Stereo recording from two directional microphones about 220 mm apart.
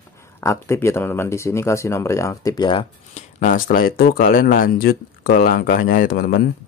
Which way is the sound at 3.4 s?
35° left (ahead or behind).